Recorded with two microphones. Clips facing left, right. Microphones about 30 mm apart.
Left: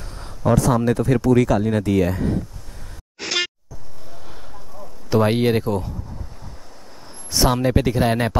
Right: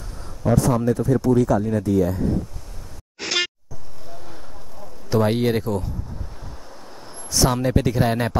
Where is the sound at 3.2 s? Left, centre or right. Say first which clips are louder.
Even; centre.